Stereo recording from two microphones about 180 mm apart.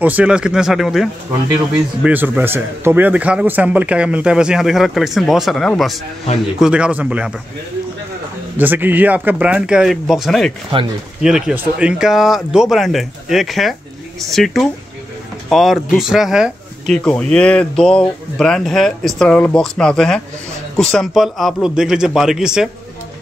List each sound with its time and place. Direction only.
0.0 s a man's voice: 10° right (ahead or behind)
8.5 s a man's voice: 10° right (ahead or behind)